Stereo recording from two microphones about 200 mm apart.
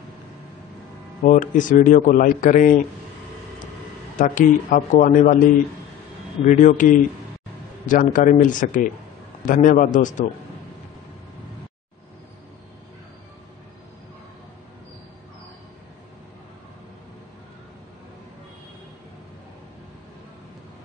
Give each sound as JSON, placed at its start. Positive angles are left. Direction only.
{"t": 1.2, "sound": "speech", "side_deg": 40}
{"t": 4.2, "sound": "speech", "side_deg": 40}
{"t": 6.4, "sound": "speech", "side_deg": 40}